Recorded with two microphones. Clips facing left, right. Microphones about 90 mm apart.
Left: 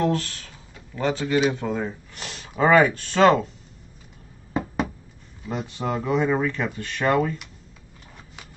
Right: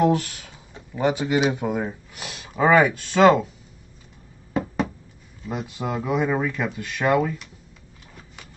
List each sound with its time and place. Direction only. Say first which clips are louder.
0.0 s speech: right 3 dB; 15° right (ahead or behind)
5.5 s speech: left 1 dB; 10° right (ahead or behind)